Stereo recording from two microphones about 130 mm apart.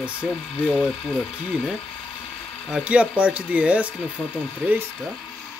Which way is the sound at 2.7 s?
10° right (ahead or behind).